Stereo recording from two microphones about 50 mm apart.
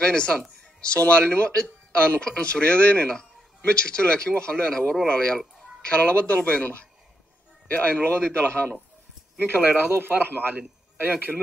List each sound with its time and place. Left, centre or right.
0.0 s speech: centre
10.0 s a man's voice: right